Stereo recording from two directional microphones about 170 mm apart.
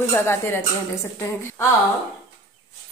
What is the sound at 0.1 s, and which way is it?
Speech, 15° left (ahead or behind).